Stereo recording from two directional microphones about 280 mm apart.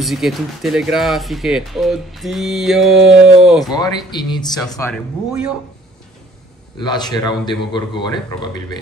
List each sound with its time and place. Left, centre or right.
0.0 s speech: centre
3.7 s speech: centre
6.8 s speech: centre